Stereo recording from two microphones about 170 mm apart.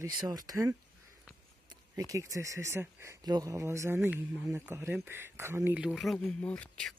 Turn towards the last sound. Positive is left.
turn(degrees=5)  # may be behind; listen again after turning